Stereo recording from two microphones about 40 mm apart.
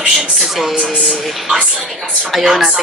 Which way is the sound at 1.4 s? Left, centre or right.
Centre.